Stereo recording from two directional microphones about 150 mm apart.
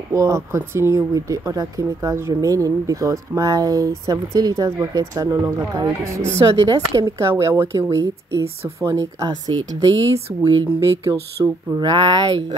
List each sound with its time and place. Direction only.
0.1 s speech: 20° right (ahead or behind)